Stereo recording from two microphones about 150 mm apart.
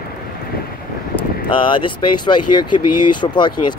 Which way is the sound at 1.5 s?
30° left (ahead or behind).